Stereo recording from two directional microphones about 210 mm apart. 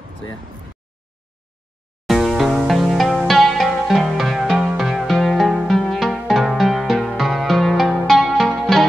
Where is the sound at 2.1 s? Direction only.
Centre (ahead or behind).